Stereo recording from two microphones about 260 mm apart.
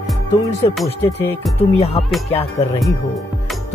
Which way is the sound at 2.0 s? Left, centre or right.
Left.